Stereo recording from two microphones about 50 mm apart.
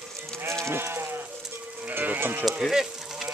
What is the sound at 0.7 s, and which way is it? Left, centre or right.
Sheep, right.